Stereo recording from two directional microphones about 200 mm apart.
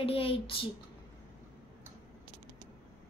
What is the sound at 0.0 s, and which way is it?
Speech, 30° left (ahead or behind).